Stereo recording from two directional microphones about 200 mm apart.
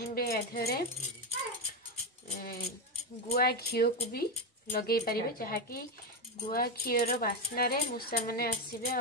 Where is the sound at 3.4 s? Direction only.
50° left (ahead or behind).